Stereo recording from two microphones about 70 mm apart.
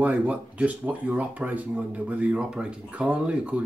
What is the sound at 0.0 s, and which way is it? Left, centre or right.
Speech, right.